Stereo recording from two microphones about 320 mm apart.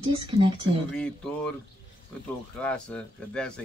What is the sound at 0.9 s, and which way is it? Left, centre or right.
Speech, centre.